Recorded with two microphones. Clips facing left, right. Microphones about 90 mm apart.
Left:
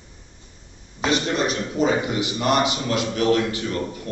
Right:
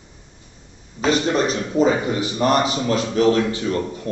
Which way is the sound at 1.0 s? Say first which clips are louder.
Right 3 dB; 35° right (ahead or behind).